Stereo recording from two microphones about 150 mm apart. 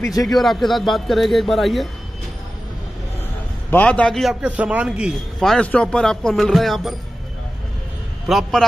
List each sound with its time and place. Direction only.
0.0 s a man's voice: 25° left (ahead or behind)
0.3 s a man's voice: centre (ahead or behind)
3.7 s a man's voice: 10° left (ahead or behind)
8.3 s a man's voice: centre (ahead or behind)